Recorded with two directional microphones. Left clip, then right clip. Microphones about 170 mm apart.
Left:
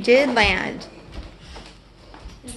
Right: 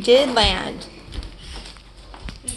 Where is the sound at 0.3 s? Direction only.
40° left (ahead or behind).